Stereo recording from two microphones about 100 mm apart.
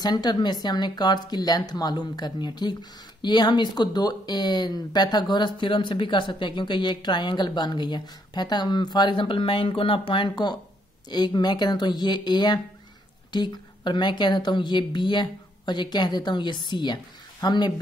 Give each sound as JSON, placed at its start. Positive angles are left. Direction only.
{"t": 0.0, "sound": "speech", "side_deg": 45}